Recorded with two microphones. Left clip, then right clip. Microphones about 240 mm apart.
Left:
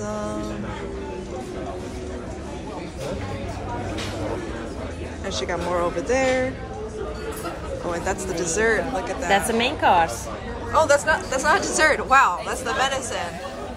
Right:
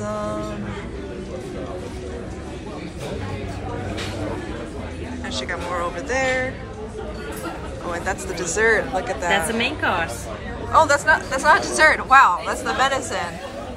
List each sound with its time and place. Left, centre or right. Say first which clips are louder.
0.0 s music: right 2 dB; centre
5.3 s speech: left 2 dB; left
7.9 s a woman's voice: right 1 dB; centre
9.3 s a woman's voice: left 1 dB; left
10.7 s a woman's voice: right 3 dB; centre